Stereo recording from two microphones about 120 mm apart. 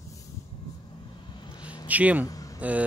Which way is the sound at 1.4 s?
40° left (ahead or behind).